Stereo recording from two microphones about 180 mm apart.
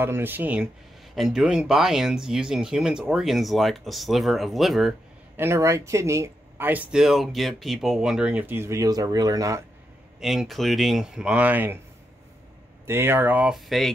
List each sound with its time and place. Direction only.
0.0 s speech: 10° right (ahead or behind)
5.4 s speech: 15° right (ahead or behind)
10.2 s speech: centre (ahead or behind)
12.8 s speech: 15° right (ahead or behind)